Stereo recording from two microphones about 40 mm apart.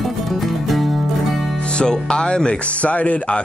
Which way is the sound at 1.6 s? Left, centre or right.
Left.